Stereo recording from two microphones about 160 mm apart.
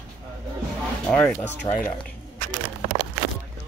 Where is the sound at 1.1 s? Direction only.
5° left (ahead or behind).